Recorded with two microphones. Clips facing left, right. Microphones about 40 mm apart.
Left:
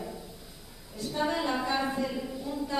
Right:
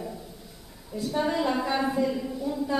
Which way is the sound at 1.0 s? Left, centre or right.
Centre.